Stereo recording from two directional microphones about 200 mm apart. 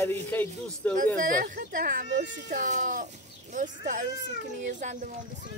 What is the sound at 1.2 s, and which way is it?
Speech, 45° right (ahead or behind).